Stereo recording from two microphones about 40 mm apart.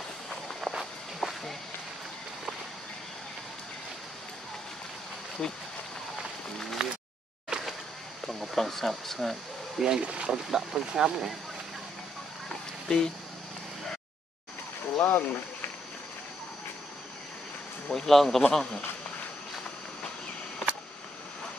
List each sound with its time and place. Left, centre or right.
0.6 s walk: centre
5.4 s speech: left
6.8 s a sound: right
8.3 s speech: centre
9.8 s speech: centre
10.0 s speech: right
10.3 s speech: centre
12.8 s speech: centre
15.0 s speech: left
17.8 s speech: centre